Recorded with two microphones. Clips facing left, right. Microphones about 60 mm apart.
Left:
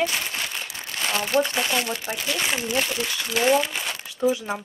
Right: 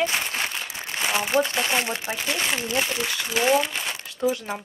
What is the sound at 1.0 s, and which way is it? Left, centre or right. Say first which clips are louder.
Speech: even; centre.